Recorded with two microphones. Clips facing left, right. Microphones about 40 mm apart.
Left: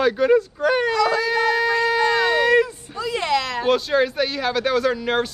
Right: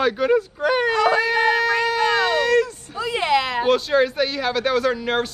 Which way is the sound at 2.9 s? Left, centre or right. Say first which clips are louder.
Right 2 dB; centre.